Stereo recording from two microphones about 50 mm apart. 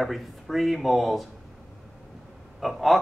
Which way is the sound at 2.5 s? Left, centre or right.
Centre.